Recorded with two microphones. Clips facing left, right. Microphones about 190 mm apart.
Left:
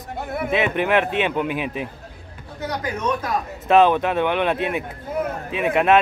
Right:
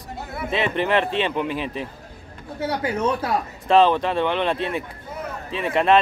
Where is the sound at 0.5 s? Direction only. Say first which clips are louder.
Left 1 dB; 5° left (ahead or behind).